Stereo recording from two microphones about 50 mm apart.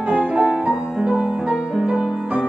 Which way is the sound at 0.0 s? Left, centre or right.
Right.